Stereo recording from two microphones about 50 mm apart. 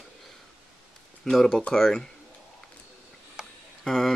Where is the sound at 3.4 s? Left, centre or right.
Centre.